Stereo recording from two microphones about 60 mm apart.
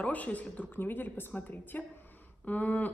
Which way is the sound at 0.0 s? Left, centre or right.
Left.